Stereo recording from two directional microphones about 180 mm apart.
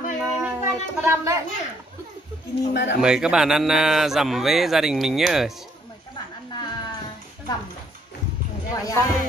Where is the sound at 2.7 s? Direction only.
65° left (ahead or behind).